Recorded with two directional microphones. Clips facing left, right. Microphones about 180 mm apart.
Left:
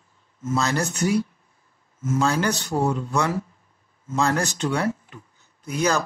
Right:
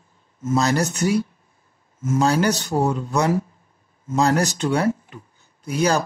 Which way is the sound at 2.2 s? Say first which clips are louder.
Right 4 dB; 35° right (ahead or behind).